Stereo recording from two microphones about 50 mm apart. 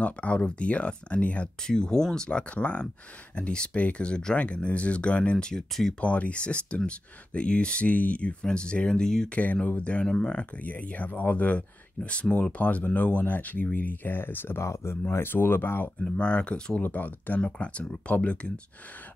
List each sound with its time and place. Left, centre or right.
0.0 s speech: left
1.6 s speech: centre
5.9 s speech: left
9.3 s speech: left
10.6 s speech: left
14.6 s speech: left
16.0 s speech: left
16.8 s speech: left